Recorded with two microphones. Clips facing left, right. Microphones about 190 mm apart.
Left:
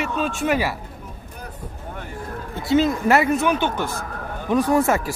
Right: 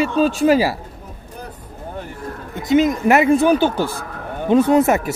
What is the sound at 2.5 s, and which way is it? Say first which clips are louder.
Speech: right 3 dB; 15° right (ahead or behind).